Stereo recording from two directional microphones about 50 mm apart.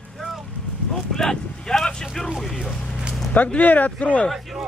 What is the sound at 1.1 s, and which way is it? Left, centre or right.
Vehicle, centre.